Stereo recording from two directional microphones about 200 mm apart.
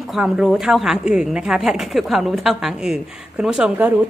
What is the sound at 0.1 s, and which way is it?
A woman's voice, centre (ahead or behind).